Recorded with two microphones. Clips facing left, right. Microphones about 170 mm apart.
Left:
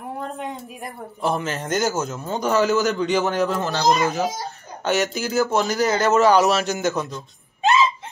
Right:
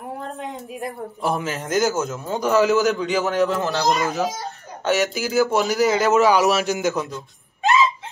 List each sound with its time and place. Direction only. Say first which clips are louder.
1.3 s a man's voice: right 2 dB; centre (ahead or behind)
7.6 s gasp: even; 20° left (ahead or behind)